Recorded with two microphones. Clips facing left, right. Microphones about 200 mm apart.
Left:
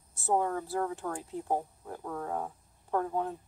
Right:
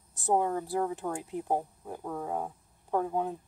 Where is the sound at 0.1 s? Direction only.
15° right (ahead or behind).